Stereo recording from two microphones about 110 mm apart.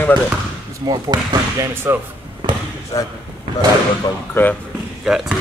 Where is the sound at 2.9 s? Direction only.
35° left (ahead or behind).